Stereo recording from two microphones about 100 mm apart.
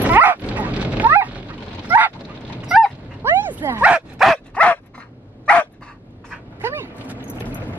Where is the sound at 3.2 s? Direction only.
25° right (ahead or behind).